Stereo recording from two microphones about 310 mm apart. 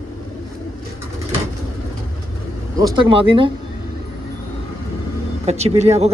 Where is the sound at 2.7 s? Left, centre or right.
Centre.